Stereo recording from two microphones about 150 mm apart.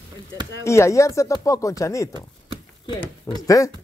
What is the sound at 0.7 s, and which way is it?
Speech, 20° left (ahead or behind).